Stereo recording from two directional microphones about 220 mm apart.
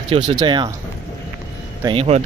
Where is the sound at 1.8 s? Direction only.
25° right (ahead or behind).